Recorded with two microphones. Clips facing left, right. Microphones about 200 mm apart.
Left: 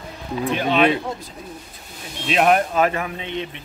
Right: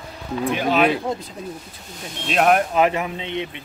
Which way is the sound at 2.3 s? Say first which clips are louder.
Even; centre (ahead or behind).